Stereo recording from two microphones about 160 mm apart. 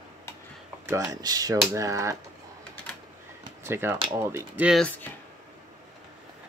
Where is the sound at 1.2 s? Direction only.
20° right (ahead or behind).